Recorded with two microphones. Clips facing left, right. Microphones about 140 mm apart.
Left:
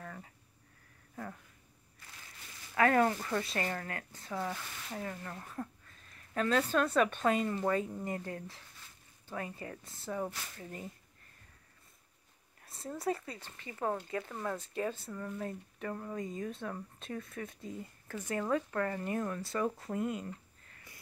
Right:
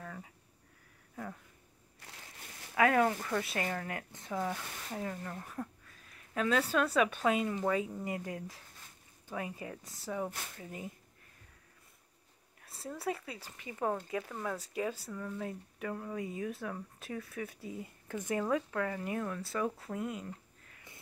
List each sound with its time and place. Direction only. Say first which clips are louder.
0.0 s a sound: right 1 dB; centre (ahead or behind)
1.1 s speech: even; centre (ahead or behind)
2.7 s speech: even; 5° right (ahead or behind)
3.9 s speech: right 2 dB; 20° right (ahead or behind)
12.6 s speech: left 2 dB; centre (ahead or behind)
14.3 s speech: even; centre (ahead or behind); by 18.4 s 15° right (ahead or behind)
18.4 s speech: left 2 dB; 5° right (ahead or behind)